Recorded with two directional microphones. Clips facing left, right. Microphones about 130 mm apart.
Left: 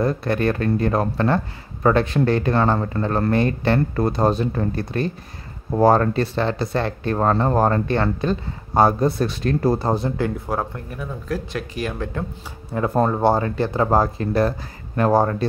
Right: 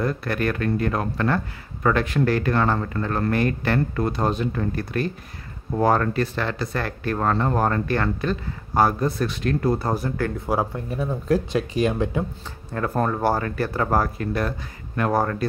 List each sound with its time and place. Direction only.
0.0 s speech: 25° left (ahead or behind)
10.4 s speech: 5° right (ahead or behind)
10.9 s speech: 25° right (ahead or behind)
12.7 s speech: 20° left (ahead or behind)